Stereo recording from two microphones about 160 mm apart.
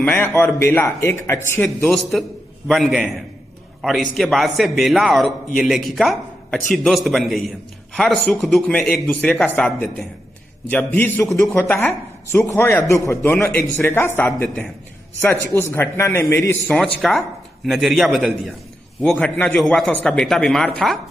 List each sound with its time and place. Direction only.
0.0 s a man's voice: 15° left (ahead or behind)
1.8 s a man's voice: centre (ahead or behind)
4.2 s a man's voice: centre (ahead or behind)
16.7 s a man's voice: 5° left (ahead or behind)